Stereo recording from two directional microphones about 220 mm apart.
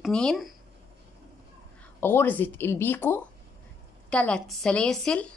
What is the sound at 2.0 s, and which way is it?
A woman's voice, 10° left (ahead or behind).